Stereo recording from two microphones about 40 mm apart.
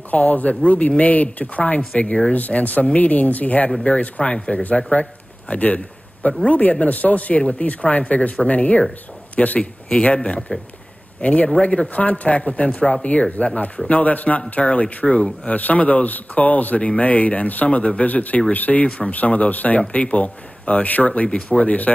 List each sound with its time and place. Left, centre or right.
0.1 s speech: left
2.3 s speech: left
4.9 s a man's voice: left
9.6 s speech: left